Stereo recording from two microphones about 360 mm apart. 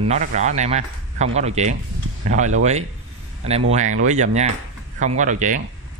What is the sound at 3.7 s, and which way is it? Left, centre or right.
Speech, centre.